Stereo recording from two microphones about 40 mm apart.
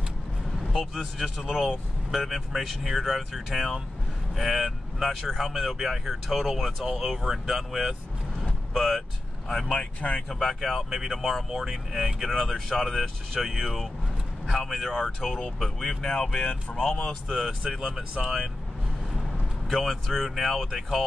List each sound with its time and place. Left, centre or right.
0.7 s speech: centre
5.8 s speech: centre
9.8 s speech: left
10.2 s speech: centre
12.4 s speech: centre
17.5 s speech: centre
19.7 s speech: centre